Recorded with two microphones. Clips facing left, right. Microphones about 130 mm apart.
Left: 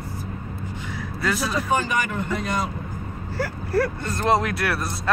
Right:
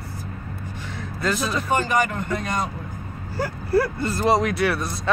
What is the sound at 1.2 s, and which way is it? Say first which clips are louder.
Speech: right 1 dB; 5° left (ahead or behind).